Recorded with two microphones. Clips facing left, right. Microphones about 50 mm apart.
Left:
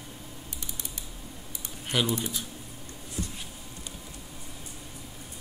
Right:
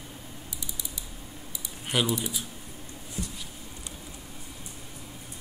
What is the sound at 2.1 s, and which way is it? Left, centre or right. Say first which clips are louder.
Speech: even; left.